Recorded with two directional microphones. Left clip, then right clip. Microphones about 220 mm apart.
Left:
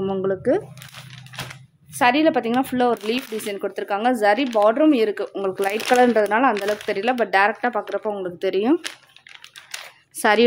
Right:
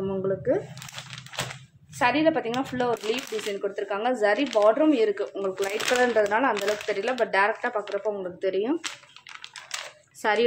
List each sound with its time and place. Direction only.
0.0 s a sound: 50° left (ahead or behind)
2.0 s speech: 50° left (ahead or behind)
10.2 s speech: 50° left (ahead or behind)